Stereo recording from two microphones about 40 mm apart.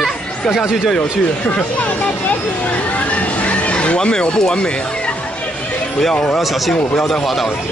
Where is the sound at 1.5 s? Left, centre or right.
Left.